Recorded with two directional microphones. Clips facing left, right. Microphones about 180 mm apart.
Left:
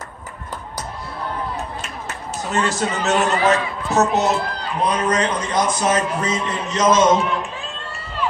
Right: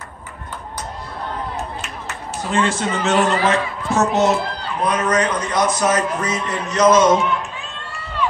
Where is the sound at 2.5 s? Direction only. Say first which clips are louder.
Right 2 dB; 40° left (ahead or behind).